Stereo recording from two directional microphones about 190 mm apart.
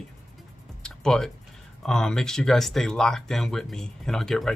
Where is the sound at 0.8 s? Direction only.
5° left (ahead or behind).